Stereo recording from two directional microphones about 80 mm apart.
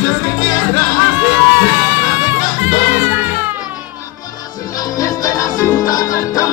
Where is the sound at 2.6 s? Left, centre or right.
Right.